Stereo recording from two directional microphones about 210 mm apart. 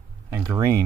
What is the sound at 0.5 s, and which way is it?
Speech, 15° right (ahead or behind).